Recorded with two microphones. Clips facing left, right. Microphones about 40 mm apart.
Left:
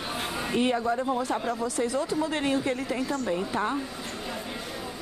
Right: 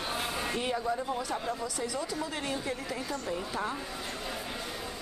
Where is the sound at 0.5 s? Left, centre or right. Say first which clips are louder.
Left 9 dB; left.